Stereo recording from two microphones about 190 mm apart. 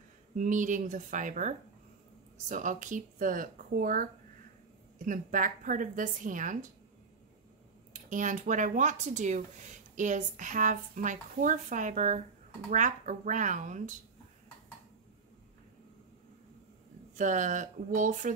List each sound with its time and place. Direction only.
0.3 s speech: 45° right (ahead or behind)
7.9 s speech: 40° right (ahead or behind)
17.1 s speech: 40° right (ahead or behind)